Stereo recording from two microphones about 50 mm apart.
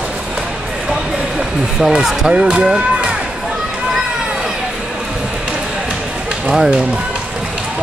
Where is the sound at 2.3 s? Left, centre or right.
Right.